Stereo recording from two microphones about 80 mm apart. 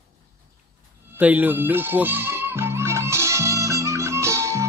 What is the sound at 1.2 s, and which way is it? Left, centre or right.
Music, centre.